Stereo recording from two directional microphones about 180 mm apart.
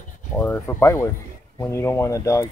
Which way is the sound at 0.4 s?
10° left (ahead or behind).